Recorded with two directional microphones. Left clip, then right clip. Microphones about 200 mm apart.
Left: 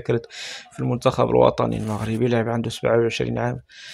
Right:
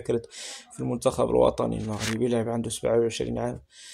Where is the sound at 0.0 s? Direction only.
5° left (ahead or behind).